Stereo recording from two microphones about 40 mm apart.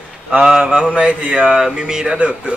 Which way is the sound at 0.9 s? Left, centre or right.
Right.